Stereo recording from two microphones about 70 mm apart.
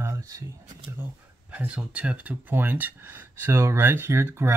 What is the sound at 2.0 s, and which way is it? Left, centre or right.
Speech, centre.